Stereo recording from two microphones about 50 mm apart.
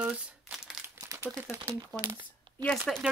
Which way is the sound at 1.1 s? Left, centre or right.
Right.